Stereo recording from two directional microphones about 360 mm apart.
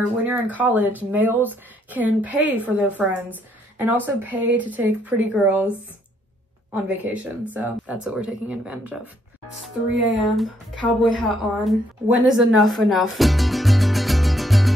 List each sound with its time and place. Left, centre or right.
0.2 s a woman's voice: centre
7.1 s a woman's voice: centre